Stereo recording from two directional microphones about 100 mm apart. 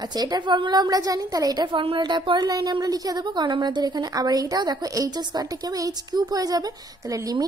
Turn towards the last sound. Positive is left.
turn(degrees=-35)  # may be behind; listen again after turning